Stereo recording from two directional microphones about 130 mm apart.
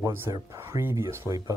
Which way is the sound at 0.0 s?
20° right (ahead or behind).